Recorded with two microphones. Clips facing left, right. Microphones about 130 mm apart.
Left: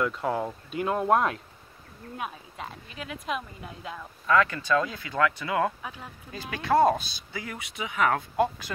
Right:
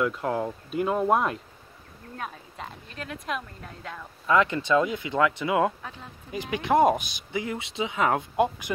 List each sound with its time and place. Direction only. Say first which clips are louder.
0.0 s a woman's voice: right 1 dB; centre (ahead or behind)
4.3 s speech: right 1 dB; 20° right (ahead or behind)